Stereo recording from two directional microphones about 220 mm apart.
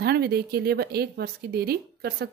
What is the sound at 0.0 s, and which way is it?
A woman's voice, 45° right (ahead or behind).